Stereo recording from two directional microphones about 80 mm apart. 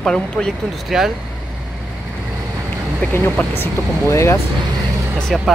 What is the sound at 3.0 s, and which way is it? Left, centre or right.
Speech, centre.